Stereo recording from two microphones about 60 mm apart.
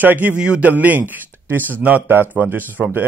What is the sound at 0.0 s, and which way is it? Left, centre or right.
Speech, right.